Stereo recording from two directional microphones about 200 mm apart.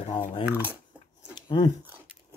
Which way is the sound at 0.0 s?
25° left (ahead or behind).